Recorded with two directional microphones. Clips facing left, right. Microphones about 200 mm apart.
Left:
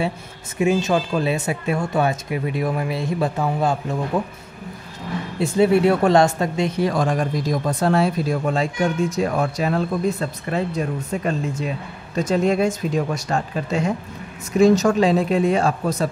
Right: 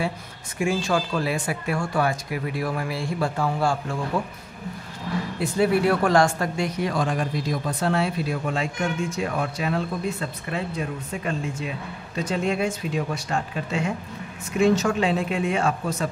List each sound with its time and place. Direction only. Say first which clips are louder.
0.6 s speech: left 5 dB; 20° left (ahead or behind)
5.4 s speech: left 5 dB; 25° left (ahead or behind)
6.8 s speech: left 5 dB; 45° left (ahead or behind)